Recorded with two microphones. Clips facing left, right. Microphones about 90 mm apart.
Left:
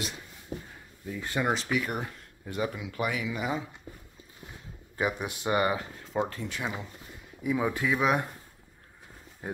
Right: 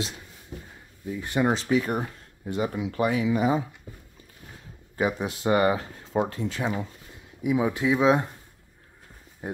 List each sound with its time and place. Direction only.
1.1 s speech: 20° right (ahead or behind)
1.5 s speech: 35° right (ahead or behind)
4.9 s speech: 25° right (ahead or behind)
7.4 s speech: 15° right (ahead or behind)